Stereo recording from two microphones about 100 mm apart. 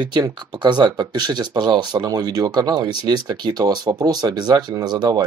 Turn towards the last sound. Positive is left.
turn(degrees=-45)  # may be behind; listen again after turning